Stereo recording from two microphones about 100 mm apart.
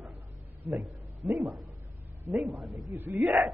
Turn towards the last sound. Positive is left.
turn(degrees=0)  # may be behind; listen again after turning